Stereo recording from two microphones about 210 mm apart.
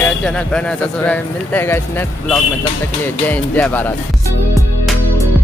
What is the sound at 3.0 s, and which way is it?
Speech, 10° left (ahead or behind).